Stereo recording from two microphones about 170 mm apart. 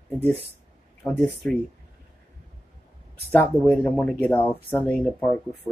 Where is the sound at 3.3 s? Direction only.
10° left (ahead or behind).